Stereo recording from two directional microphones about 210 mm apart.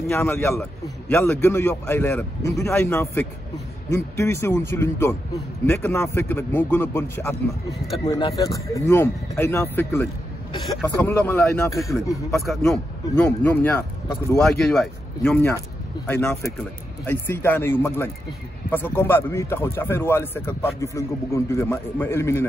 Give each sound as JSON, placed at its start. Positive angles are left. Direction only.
{"t": 0.0, "sound": "speech", "side_deg": 15}
{"t": 12.3, "sound": "speech", "side_deg": 0}